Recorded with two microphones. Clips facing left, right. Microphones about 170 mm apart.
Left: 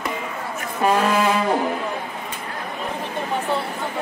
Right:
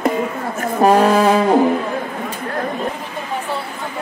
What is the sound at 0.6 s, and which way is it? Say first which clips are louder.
Speech: right 7 dB; 40° right (ahead or behind).